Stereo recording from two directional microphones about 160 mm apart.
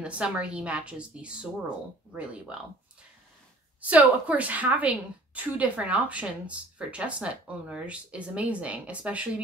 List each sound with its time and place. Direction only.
0.0 s a woman's voice: 5° right (ahead or behind)